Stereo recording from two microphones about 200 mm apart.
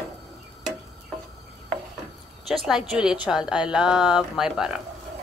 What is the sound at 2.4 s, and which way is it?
Speech, centre (ahead or behind).